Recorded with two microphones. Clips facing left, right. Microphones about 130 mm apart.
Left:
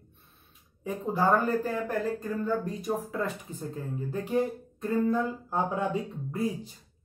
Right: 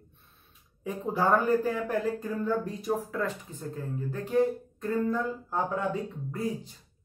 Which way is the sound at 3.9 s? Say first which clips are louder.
Right 2 dB; 15° left (ahead or behind).